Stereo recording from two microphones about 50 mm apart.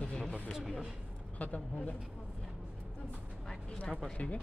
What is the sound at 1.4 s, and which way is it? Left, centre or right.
Speech, left.